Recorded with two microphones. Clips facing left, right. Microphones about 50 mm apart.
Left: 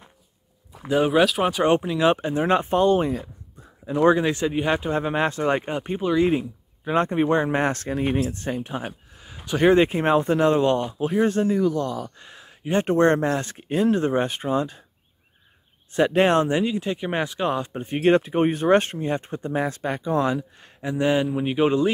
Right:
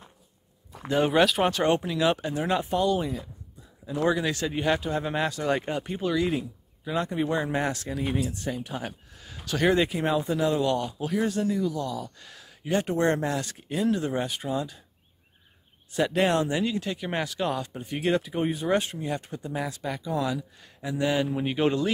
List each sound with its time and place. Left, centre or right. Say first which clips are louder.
0.7 s speech: left 3 dB; centre
1.8 s speech: left 5 dB; left
3.8 s speech: left 7 dB; left
8.7 s speech: left 4 dB; centre; by 12.1 s left
12.2 s a sound: left 3 dB; left
12.8 s speech: left 9 dB; left
15.9 s speech: left 5 dB; left
16.6 s speech: left 4 dB; left
21.3 s speech: left 4 dB; centre